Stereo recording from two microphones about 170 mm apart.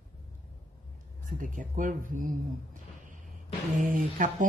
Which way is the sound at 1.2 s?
50° right (ahead or behind).